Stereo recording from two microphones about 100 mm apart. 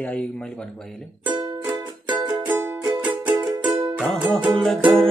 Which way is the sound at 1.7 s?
50° right (ahead or behind).